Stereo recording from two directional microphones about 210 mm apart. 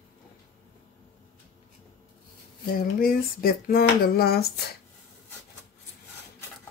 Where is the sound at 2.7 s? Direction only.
45° left (ahead or behind).